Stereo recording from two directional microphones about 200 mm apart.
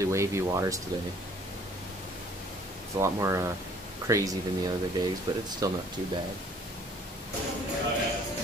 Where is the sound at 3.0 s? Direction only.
15° right (ahead or behind).